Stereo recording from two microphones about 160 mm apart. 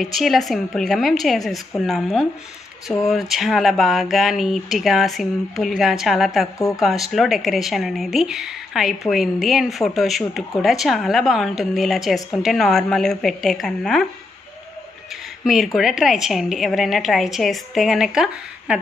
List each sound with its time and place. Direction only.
0.0 s speech: centre (ahead or behind)
15.4 s speech: centre (ahead or behind)